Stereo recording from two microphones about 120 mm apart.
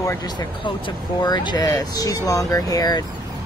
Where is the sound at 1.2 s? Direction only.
35° left (ahead or behind).